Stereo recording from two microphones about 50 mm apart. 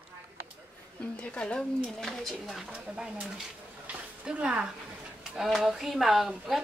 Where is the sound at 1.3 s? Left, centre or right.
Left.